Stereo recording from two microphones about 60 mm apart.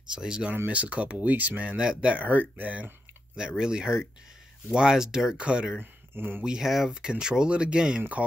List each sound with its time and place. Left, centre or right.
0.1 s speech: centre
3.3 s speech: centre
5.8 s speech: right
6.4 s speech: centre